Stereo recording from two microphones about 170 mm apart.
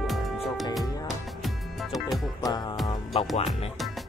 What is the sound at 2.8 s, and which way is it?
Music, 30° left (ahead or behind).